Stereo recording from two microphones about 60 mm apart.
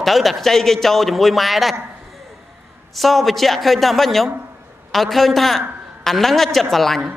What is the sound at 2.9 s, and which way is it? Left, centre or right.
A man's voice, centre.